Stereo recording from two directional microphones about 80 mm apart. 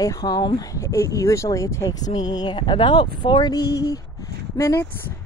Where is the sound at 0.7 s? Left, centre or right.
Left.